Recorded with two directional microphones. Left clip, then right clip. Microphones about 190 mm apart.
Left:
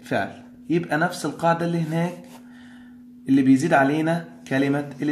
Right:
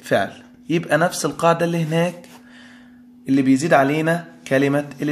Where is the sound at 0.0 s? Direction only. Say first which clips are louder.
Right 6 dB; 35° right (ahead or behind).